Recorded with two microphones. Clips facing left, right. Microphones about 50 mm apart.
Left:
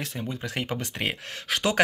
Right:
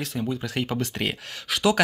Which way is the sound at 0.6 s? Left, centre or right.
Left.